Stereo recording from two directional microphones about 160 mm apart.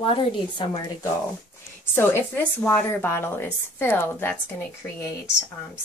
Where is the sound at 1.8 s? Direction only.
15° left (ahead or behind).